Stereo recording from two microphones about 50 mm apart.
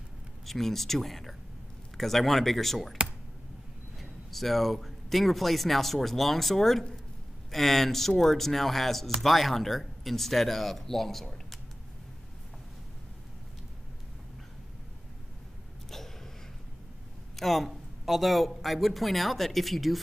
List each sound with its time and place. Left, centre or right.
0.5 s speech: centre
4.0 s speech: centre
17.4 s speech: centre